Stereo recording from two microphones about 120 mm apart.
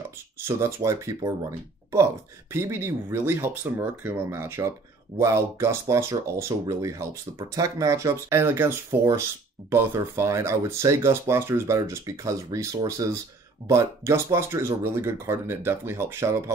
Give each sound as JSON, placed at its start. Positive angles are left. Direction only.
{"t": 0.5, "sound": "speech", "side_deg": -20}
{"t": 2.5, "sound": "speech", "side_deg": -20}